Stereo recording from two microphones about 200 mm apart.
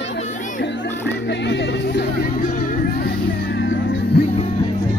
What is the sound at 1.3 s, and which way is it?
Music, 60° left (ahead or behind).